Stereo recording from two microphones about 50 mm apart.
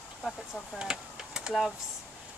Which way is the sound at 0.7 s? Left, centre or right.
Centre.